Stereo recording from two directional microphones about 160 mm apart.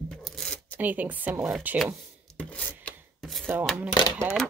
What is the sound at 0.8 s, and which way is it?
Speech, 10° right (ahead or behind).